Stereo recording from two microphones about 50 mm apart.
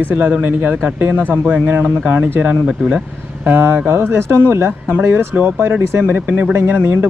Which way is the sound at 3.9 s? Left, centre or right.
Right.